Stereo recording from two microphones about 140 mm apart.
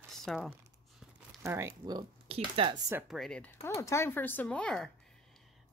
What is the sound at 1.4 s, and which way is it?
Speech, 20° right (ahead or behind).